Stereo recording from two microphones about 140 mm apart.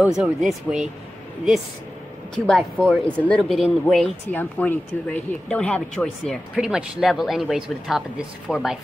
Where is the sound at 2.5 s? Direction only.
5° left (ahead or behind).